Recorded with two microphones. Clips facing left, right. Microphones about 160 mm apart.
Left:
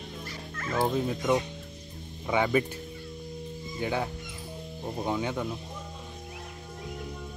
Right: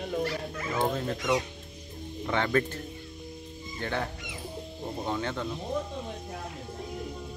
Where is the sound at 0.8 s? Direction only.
10° left (ahead or behind).